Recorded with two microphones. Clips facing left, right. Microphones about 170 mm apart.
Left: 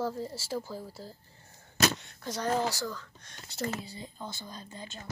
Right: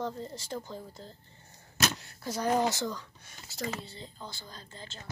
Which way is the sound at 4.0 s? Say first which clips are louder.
Left 3 dB; 20° left (ahead or behind).